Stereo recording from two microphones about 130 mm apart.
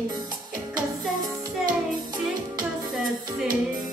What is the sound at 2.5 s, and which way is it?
Music, 30° right (ahead or behind).